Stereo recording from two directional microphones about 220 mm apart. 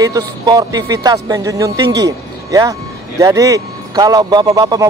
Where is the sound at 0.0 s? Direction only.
15° right (ahead or behind).